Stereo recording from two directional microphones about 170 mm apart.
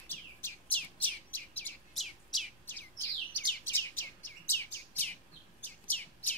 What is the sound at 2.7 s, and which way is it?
Bird, 10° left (ahead or behind).